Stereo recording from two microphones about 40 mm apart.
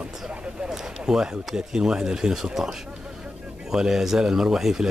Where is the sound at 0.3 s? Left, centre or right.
Right.